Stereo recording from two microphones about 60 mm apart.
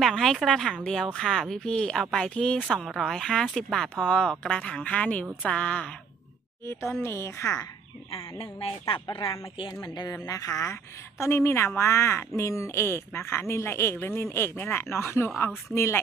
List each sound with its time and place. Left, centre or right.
0.0 s a sound: centre
0.5 s speech: centre
2.6 s a woman's voice: centre; by 5.9 s left
7.0 s speech: left
9.0 s a woman's voice: left